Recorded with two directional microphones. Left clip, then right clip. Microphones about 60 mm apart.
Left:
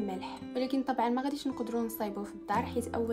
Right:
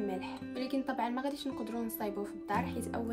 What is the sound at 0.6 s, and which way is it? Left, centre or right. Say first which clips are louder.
A woman's voice: left 4 dB; left.